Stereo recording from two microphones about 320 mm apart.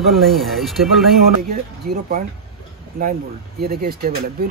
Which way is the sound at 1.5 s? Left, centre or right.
Right.